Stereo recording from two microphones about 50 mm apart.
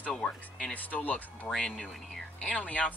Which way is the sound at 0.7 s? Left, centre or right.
Left.